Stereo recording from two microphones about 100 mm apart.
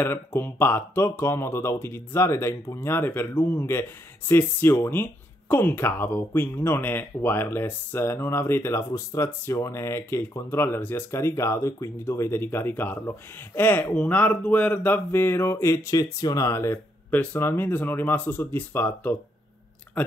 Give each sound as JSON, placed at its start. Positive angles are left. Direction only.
{"t": 0.0, "sound": "speech", "side_deg": 20}